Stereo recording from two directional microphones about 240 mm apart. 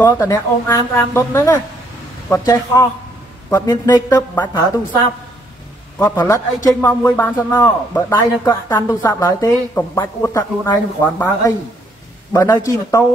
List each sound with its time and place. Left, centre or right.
0.0 s a man's voice: centre